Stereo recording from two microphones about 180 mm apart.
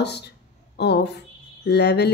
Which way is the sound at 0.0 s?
65° left (ahead or behind).